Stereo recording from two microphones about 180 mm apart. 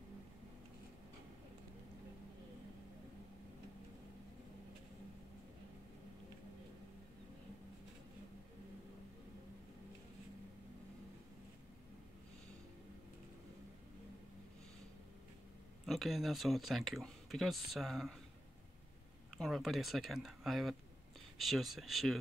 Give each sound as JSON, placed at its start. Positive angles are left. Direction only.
{"t": 15.8, "sound": "speech", "side_deg": 0}
{"t": 19.3, "sound": "speech", "side_deg": 0}